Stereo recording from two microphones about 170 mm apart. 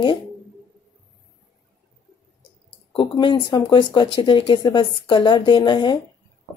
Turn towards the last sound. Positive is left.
turn(degrees=25)  # may be behind; listen again after turning